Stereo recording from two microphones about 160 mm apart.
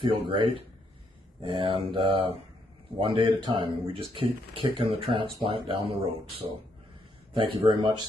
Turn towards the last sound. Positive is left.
turn(degrees=-30)  # may be behind; listen again after turning